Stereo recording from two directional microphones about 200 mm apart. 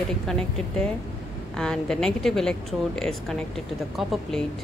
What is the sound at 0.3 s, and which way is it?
Speech, 5° left (ahead or behind).